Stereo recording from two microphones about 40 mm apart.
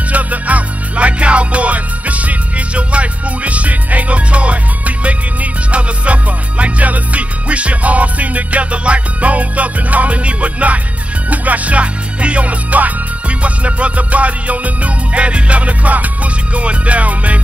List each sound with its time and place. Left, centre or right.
0.1 s music: right